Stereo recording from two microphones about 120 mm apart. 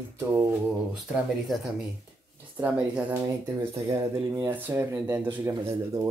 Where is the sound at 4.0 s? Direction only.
35° right (ahead or behind).